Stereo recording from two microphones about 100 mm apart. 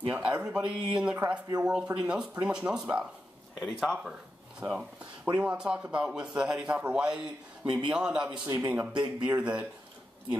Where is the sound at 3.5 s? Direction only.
5° left (ahead or behind).